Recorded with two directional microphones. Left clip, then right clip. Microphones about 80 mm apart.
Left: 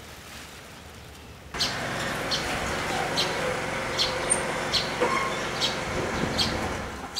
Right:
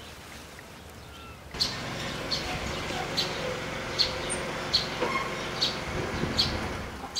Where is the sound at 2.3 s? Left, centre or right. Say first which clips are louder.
Left 2 dB; left.